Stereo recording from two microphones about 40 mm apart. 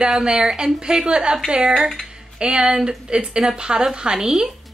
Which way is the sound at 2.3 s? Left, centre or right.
Right.